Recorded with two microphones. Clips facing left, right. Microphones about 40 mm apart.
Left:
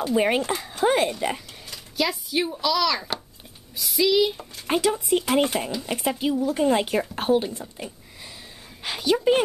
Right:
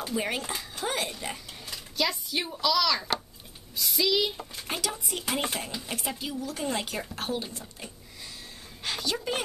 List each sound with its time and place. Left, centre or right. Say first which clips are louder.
0.1 s speech: left 10 dB; left
1.7 s speech: left 3 dB; centre
4.6 s speech: left 12 dB; left
5.2 s speech: left 9 dB; centre